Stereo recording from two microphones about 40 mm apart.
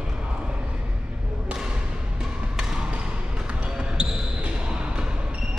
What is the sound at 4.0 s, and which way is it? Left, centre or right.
Basketball bounce, right.